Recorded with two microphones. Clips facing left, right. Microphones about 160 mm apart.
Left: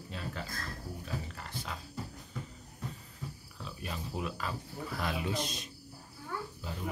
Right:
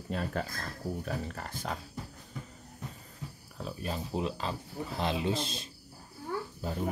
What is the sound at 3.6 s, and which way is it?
Speech, 35° right (ahead or behind).